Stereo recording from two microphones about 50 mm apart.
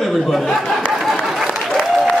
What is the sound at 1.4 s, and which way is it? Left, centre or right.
Applause, centre.